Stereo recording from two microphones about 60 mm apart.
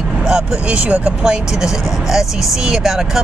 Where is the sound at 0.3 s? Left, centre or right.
Centre.